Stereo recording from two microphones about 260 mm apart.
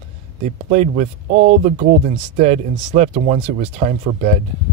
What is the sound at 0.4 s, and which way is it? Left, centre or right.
Speech, right.